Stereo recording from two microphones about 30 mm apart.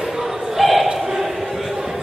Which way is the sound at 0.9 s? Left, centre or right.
Centre.